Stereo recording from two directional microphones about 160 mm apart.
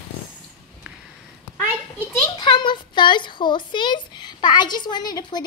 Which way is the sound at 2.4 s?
30° left (ahead or behind).